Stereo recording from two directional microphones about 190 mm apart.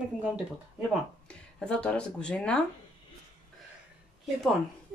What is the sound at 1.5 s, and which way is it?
Speech, 5° left (ahead or behind).